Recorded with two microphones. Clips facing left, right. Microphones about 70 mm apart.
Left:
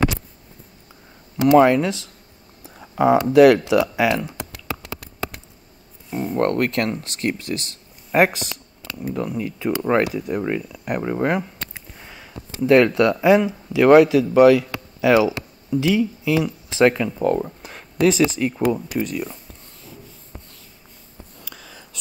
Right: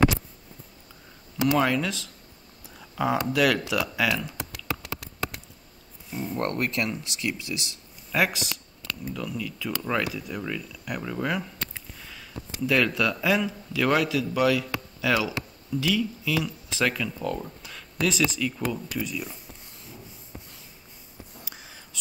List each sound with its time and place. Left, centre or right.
1.6 s speech: left
6.0 s a sound: left
6.4 s speech: left
12.0 s a sound: left
13.8 s speech: left
15.0 s speech: left
17.2 s speech: left